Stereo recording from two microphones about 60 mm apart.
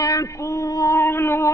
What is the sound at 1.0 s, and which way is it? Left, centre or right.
Cat, left.